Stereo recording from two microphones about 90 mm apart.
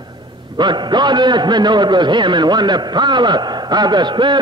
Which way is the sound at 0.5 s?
55° right (ahead or behind).